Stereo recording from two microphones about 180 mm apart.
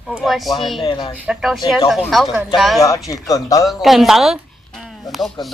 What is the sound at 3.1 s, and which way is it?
Speech, 20° left (ahead or behind).